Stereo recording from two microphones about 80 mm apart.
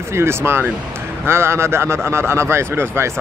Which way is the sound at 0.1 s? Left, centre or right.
Right.